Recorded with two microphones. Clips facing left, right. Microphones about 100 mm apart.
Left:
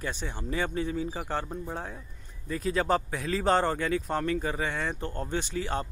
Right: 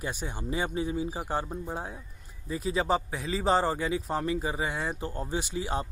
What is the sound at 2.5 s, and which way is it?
A man's voice, centre (ahead or behind).